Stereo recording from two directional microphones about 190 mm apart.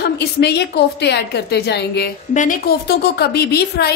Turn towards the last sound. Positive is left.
turn(degrees=55)  # may be behind; listen again after turning